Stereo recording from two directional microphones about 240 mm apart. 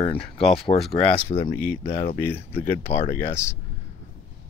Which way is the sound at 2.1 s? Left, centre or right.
Centre.